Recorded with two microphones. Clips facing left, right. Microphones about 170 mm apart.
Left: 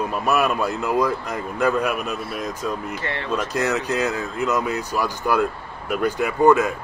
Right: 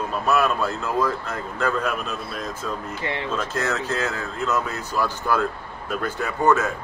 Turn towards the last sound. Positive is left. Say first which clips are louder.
# left 4 dB
turn(degrees=15)  # may be behind; listen again after turning